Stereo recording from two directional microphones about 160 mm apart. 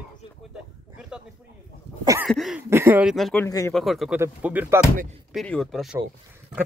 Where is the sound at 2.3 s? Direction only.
Centre (ahead or behind).